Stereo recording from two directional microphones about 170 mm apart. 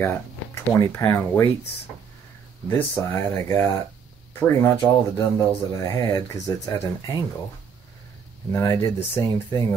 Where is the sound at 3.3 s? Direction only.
15° left (ahead or behind).